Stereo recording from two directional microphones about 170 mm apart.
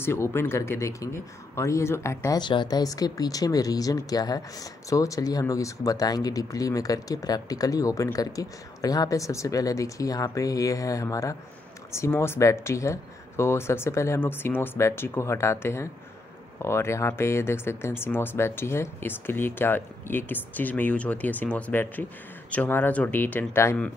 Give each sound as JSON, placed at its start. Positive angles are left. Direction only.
{"t": 0.0, "sound": "speech", "side_deg": 15}